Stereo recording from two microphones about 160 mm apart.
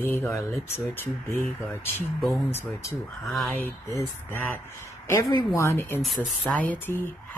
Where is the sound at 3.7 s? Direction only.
15° left (ahead or behind).